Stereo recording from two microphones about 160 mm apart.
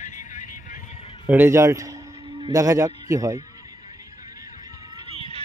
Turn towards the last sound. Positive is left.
turn(degrees=35)  # may be behind; listen again after turning